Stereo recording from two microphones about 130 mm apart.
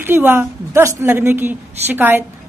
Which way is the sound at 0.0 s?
15° right (ahead or behind).